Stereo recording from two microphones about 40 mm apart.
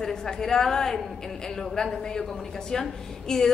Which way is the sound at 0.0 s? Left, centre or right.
Centre.